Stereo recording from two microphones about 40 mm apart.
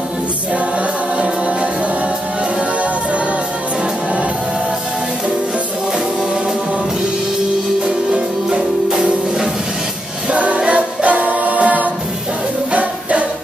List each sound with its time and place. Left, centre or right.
7.8 s music: centre
10.3 s music: right